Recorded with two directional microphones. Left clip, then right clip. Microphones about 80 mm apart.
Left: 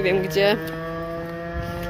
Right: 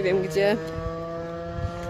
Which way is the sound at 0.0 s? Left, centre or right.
Right.